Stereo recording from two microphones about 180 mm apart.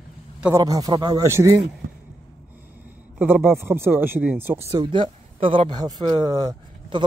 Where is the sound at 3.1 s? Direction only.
10° right (ahead or behind).